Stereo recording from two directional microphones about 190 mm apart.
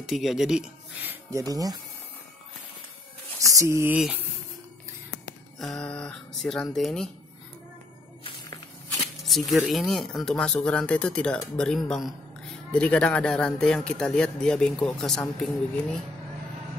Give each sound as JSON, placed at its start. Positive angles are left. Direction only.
{"t": 0.0, "sound": "speech", "side_deg": 0}
{"t": 1.5, "sound": "speech", "side_deg": -20}
{"t": 3.5, "sound": "a sound", "side_deg": -15}
{"t": 5.6, "sound": "speech", "side_deg": 5}
{"t": 8.2, "sound": "walk", "side_deg": 20}
{"t": 9.2, "sound": "speech", "side_deg": 0}